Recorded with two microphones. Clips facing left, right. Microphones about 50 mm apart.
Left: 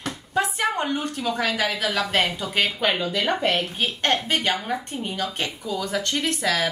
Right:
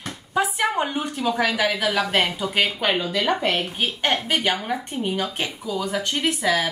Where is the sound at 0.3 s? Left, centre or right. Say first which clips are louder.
Right 1 dB; centre.